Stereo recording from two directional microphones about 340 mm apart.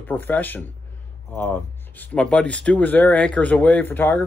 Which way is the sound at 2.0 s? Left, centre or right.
Centre.